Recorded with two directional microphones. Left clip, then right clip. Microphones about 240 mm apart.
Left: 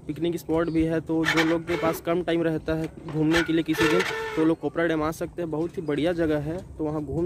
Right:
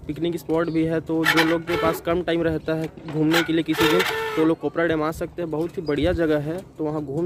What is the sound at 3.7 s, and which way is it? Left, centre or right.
Speech, right.